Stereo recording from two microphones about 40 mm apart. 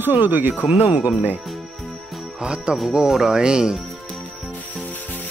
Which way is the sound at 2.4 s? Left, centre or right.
Right.